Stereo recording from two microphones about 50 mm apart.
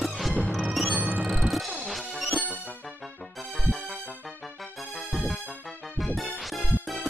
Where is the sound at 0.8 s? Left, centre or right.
Right.